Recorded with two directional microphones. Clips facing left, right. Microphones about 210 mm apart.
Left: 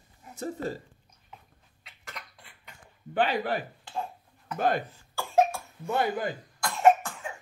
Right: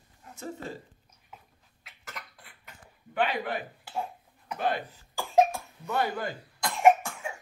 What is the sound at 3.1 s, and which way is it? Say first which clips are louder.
Speech: left 2 dB; 35° left (ahead or behind).